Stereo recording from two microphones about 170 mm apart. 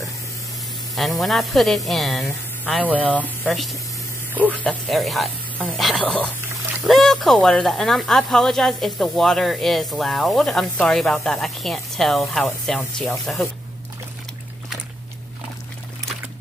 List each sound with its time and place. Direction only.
0.9 s speech: centre (ahead or behind)